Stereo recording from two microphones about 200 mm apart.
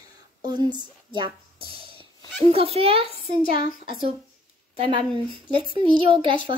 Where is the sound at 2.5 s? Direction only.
30° right (ahead or behind).